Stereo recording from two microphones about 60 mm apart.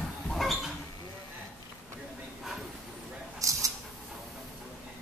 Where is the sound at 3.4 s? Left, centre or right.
Right.